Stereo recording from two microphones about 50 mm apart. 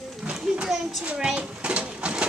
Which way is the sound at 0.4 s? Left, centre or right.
Centre.